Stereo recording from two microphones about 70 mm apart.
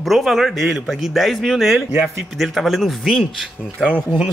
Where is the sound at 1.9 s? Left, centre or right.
Right.